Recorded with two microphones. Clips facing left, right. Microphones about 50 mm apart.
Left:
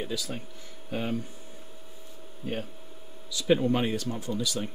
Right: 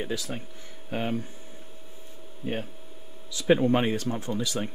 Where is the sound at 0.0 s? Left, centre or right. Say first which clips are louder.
Right 2 dB; right.